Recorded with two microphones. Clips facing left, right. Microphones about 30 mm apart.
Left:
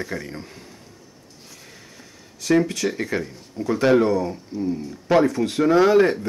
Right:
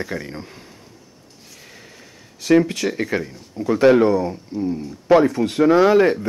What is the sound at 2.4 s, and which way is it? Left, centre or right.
Speech, right.